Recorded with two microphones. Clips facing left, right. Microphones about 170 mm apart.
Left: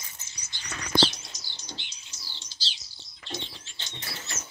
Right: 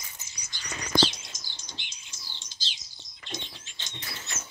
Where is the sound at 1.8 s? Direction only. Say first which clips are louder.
Even; 15° right (ahead or behind).